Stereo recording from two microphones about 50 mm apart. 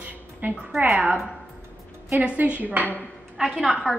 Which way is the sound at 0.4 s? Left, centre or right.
Right.